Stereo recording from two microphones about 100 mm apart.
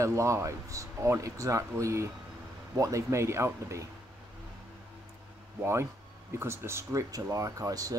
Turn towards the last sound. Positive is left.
turn(degrees=-35)  # may be behind; listen again after turning